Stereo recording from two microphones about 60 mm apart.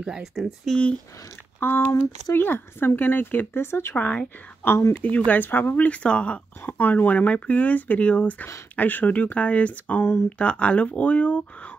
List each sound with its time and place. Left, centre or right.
0.0 s speech: centre
0.7 s speech: centre
1.6 s speech: left
3.9 s speech: left
4.6 s speech: left
5.0 s speech: left
5.4 s speech: left
5.9 s speech: left
6.6 s speech: left